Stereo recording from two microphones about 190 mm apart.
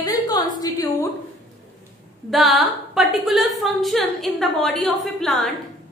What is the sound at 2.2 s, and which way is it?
A woman's voice, centre (ahead or behind).